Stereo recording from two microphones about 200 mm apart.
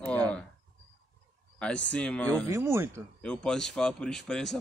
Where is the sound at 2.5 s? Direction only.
15° right (ahead or behind).